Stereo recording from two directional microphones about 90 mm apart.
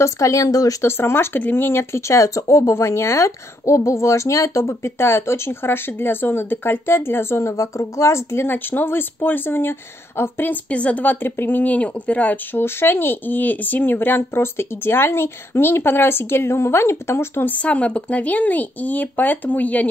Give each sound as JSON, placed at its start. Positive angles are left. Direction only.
{"t": 0.0, "sound": "speech", "side_deg": 35}
{"t": 0.9, "sound": "speech", "side_deg": 25}
{"t": 17.6, "sound": "speech", "side_deg": 15}